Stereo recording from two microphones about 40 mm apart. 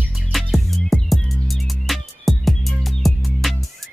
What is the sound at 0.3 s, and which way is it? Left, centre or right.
Music, centre.